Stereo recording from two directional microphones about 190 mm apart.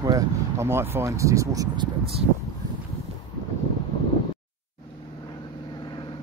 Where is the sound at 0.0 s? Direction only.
15° right (ahead or behind).